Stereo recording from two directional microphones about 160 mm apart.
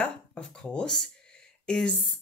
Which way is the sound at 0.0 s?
5° left (ahead or behind).